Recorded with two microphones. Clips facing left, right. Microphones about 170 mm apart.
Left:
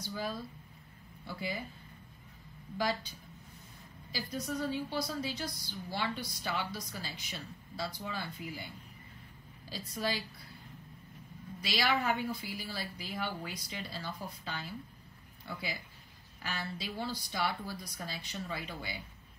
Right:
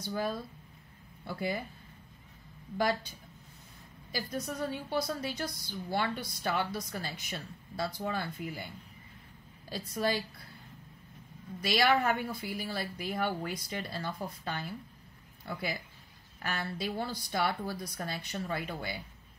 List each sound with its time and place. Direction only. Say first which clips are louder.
0.0 s a woman's voice: right 4 dB; 55° right (ahead or behind)
4.1 s a woman's voice: right 1 dB; 55° right (ahead or behind)
9.7 s a woman's voice: right 4 dB; 55° right (ahead or behind)
11.6 s a woman's voice: right 5 dB; 55° right (ahead or behind)